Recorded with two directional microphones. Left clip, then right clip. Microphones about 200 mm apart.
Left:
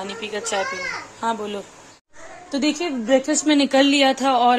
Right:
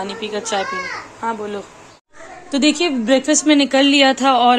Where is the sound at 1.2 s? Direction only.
20° left (ahead or behind).